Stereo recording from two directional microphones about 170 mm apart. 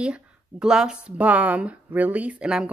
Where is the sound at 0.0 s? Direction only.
5° right (ahead or behind).